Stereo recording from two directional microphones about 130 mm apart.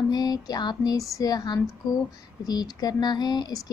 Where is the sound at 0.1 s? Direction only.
30° left (ahead or behind).